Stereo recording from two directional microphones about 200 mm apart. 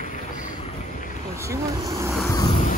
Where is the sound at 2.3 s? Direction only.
20° left (ahead or behind).